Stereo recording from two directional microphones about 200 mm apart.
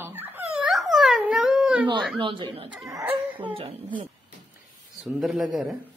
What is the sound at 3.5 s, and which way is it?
Speech, 30° right (ahead or behind).